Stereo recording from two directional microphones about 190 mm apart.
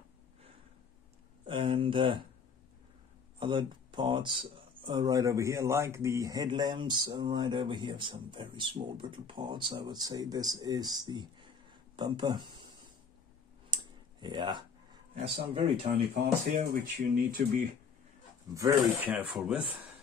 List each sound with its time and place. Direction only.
1.4 s speech: 25° right (ahead or behind)
3.3 s speech: 25° right (ahead or behind)
13.7 s a sound: 25° right (ahead or behind)
14.2 s speech: 25° right (ahead or behind)
16.5 s speech: 45° right (ahead or behind)
18.5 s speech: 15° right (ahead or behind)